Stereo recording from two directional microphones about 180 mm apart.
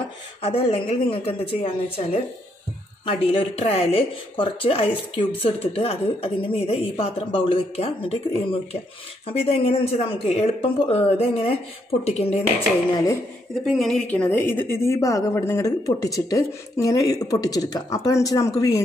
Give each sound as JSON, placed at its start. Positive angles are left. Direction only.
{"t": 0.4, "sound": "speech", "side_deg": 30}
{"t": 13.7, "sound": "a woman's voice", "side_deg": 0}